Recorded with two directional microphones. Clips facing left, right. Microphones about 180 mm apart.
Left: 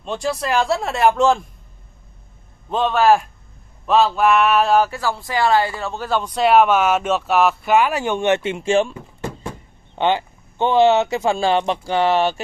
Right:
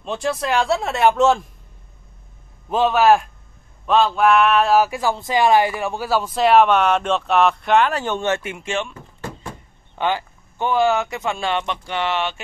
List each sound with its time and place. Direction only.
0.0 s speech: centre (ahead or behind)
2.7 s speech: 5° right (ahead or behind); by 8.9 s 30° left (ahead or behind)
9.9 s speech: 25° left (ahead or behind)